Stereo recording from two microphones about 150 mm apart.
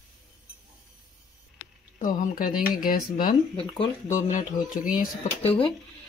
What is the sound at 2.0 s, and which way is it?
Speech, 65° left (ahead or behind).